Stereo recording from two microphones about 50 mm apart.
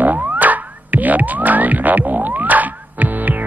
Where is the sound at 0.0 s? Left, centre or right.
Right.